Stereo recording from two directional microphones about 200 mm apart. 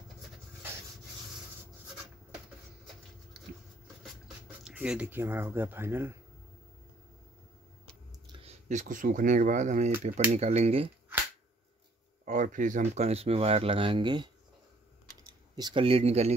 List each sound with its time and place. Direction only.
4.6 s speech: 5° right (ahead or behind)
8.3 s speech: 30° right (ahead or behind)
12.3 s speech: 40° right (ahead or behind)